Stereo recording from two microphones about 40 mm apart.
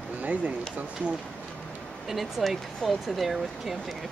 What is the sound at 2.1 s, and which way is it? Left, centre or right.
Speech, centre.